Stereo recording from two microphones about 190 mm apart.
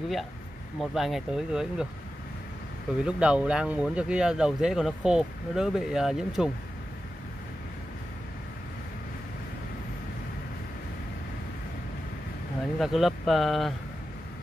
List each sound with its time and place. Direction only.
0.7 s speech: centre (ahead or behind)
3.0 s speech: 5° right (ahead or behind)
12.7 s speech: centre (ahead or behind)